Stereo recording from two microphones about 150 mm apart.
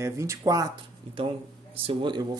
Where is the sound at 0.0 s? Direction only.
20° right (ahead or behind).